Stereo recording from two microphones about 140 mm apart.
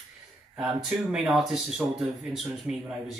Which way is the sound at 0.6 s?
5° right (ahead or behind).